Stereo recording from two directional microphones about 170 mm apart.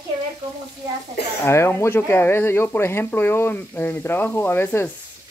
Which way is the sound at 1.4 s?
15° left (ahead or behind).